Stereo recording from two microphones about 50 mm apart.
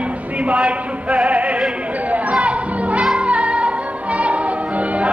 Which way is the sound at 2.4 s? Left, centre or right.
Right.